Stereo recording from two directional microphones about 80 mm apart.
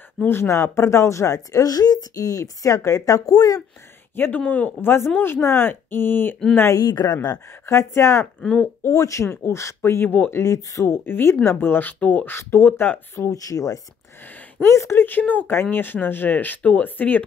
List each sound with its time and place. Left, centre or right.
0.3 s a woman's voice: left
4.1 s speech: left
6.7 s speech: left
7.6 s speech: left
10.0 s speech: left
10.4 s a woman's voice: left
11.1 s speech: left
12.4 s speech: left
13.3 s a woman's voice: left
14.6 s speech: left